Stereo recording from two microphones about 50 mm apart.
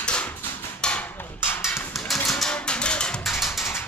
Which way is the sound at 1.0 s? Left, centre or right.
Left.